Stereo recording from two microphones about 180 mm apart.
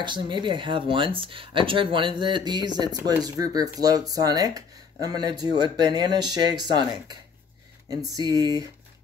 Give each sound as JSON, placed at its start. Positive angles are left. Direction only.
{"t": 0.0, "sound": "speech", "side_deg": -25}
{"t": 8.2, "sound": "speech", "side_deg": -20}